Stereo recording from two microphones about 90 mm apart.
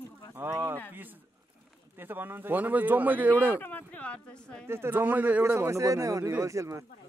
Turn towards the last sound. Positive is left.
turn(degrees=-35)  # may be behind; listen again after turning